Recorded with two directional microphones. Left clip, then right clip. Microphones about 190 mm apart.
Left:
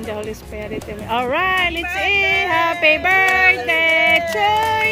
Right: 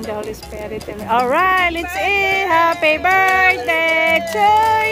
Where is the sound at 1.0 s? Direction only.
20° right (ahead or behind).